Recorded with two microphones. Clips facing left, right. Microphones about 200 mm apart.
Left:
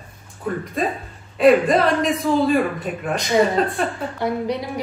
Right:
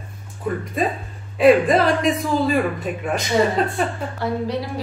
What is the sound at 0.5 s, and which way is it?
A man's voice, centre (ahead or behind).